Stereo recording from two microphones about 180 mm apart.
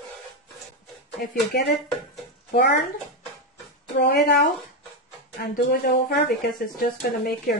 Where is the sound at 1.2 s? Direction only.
55° left (ahead or behind).